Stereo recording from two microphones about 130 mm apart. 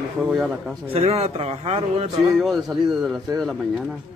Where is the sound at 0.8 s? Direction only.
50° right (ahead or behind).